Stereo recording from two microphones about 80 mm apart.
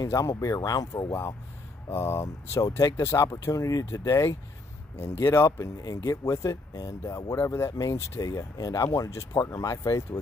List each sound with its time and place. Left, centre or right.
0.0 s speech: left
1.9 s speech: left